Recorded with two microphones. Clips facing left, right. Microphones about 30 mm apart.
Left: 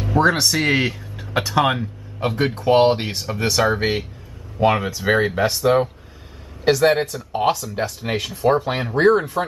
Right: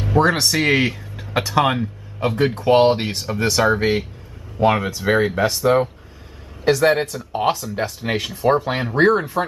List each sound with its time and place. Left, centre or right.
0.1 s speech: centre